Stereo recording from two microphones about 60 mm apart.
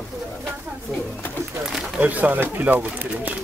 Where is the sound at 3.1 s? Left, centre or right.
Right.